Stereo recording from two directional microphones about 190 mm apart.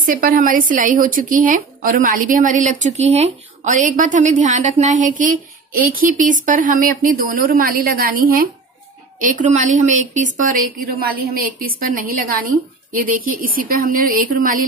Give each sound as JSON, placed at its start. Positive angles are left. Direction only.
{"t": 0.0, "sound": "speech", "side_deg": -45}